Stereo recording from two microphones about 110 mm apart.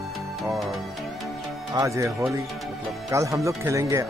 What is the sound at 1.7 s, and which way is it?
Speech, 30° right (ahead or behind).